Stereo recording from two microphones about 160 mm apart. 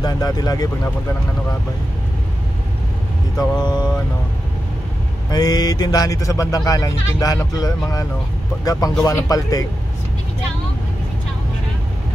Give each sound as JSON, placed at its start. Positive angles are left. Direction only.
{"t": 0.0, "sound": "speech", "side_deg": 25}
{"t": 3.3, "sound": "speech", "side_deg": 25}
{"t": 5.3, "sound": "speech", "side_deg": 25}